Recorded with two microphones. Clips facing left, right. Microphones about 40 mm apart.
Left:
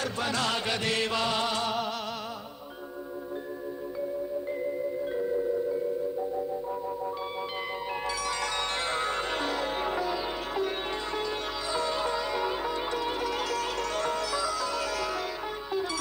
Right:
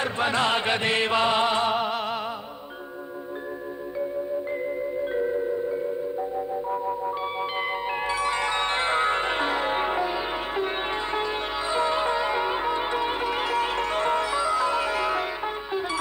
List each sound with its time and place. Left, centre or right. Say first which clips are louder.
0.0 s music: right 6 dB; right
5.0 s music: right 4 dB; right